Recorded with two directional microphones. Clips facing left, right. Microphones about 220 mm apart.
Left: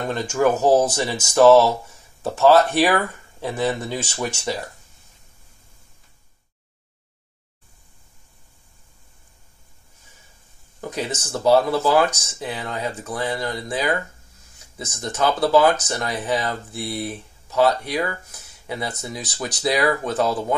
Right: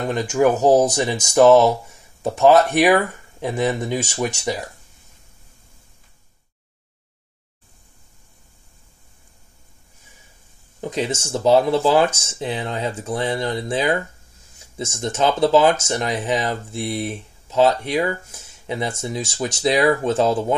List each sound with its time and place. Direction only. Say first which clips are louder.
0.1 s speech: right 2 dB; 15° right (ahead or behind)
10.8 s speech: right 4 dB; 20° right (ahead or behind)